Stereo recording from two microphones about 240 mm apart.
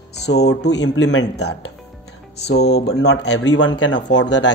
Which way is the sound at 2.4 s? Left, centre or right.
Left.